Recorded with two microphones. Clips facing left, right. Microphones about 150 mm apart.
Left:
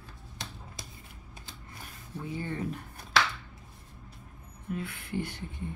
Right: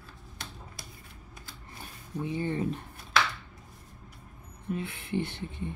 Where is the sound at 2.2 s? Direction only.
20° right (ahead or behind).